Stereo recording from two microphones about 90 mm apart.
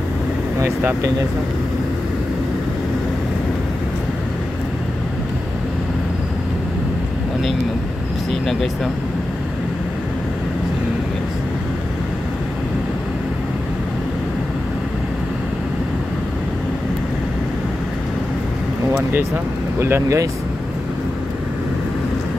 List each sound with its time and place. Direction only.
0.6 s speech: 30° right (ahead or behind)
8.3 s vehicle: centre (ahead or behind)
19.8 s speech: 30° right (ahead or behind)